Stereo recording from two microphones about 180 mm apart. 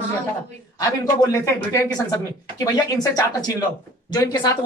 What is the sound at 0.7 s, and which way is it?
Speech, 20° left (ahead or behind).